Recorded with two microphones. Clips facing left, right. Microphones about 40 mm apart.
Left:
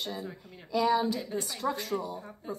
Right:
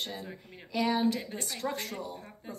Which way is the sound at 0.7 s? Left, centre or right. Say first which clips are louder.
Left 2 dB; right.